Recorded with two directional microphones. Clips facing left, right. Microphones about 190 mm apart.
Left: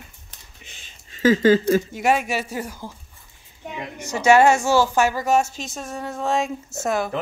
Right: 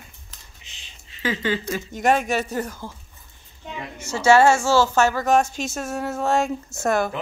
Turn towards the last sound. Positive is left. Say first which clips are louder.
# right 2 dB
turn(degrees=0)  # may be behind; listen again after turning